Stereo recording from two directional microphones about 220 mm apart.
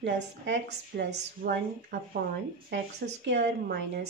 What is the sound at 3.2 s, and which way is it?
Speech, 55° right (ahead or behind).